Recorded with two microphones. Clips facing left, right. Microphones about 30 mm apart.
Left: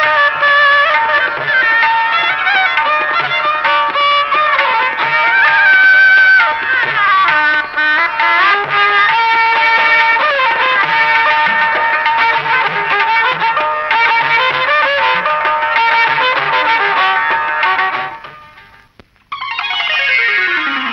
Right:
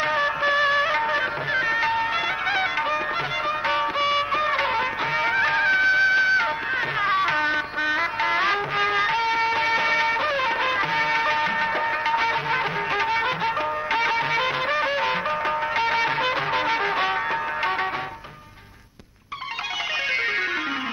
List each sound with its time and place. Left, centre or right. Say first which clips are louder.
0.0 s music: left 11 dB; left
3.6 s music of bollywood: left 10 dB; left
15.7 s music: left 12 dB; left